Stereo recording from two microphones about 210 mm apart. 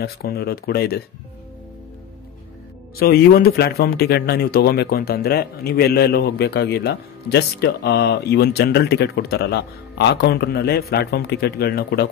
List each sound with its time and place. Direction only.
0.0 s a man's voice: 45° left (ahead or behind)
3.0 s a man's voice: 45° left (ahead or behind)